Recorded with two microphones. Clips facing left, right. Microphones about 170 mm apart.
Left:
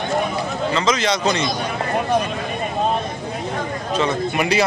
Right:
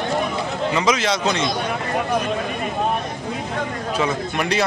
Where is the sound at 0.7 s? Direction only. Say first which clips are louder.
Even; 10° right (ahead or behind).